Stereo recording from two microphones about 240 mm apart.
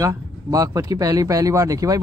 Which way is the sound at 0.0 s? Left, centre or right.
Centre.